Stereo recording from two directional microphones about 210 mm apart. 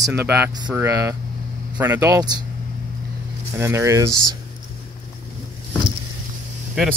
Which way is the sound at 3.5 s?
15° right (ahead or behind).